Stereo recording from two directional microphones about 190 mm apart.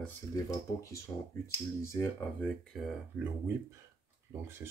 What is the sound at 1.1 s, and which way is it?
Speech, 15° left (ahead or behind).